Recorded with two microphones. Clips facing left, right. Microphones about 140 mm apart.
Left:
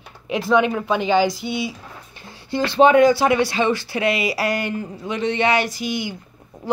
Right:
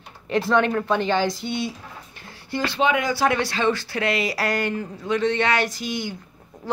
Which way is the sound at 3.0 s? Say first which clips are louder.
Left 6 dB; 15° left (ahead or behind).